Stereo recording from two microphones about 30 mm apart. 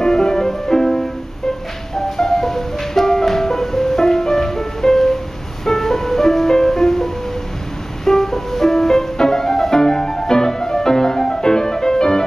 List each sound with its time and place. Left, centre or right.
0.0 s music: centre
2.0 s music: centre